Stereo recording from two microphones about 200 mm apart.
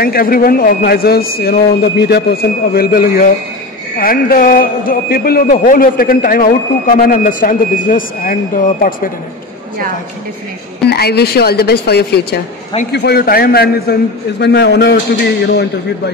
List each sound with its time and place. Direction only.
0.0 s a man's voice: 45° left (ahead or behind)
10.9 s a man's voice: 55° left (ahead or behind)